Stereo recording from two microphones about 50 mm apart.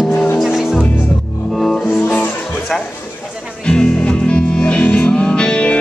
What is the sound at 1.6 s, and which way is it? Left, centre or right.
Music, centre.